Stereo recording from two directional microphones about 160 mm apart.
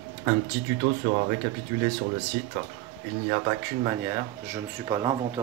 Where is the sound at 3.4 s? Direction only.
25° right (ahead or behind).